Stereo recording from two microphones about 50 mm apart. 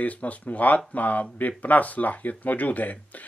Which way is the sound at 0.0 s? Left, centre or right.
Left.